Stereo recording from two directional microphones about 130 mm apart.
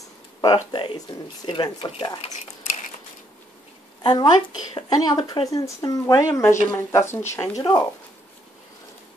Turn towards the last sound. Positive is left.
turn(degrees=20)  # may be behind; listen again after turning